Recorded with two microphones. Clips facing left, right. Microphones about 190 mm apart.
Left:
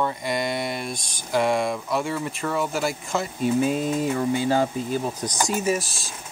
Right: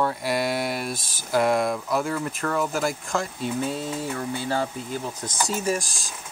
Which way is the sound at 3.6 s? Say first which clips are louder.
Left 5 dB; 15° left (ahead or behind).